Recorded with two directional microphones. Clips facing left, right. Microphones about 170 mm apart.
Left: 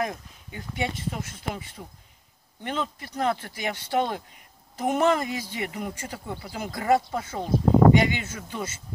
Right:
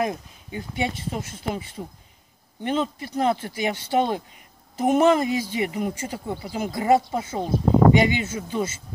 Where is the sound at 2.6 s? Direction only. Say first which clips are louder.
Right 6 dB; 25° right (ahead or behind).